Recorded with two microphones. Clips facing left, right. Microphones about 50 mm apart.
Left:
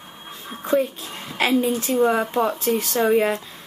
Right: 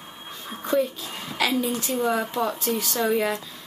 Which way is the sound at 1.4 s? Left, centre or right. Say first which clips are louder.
Left 4 dB; left.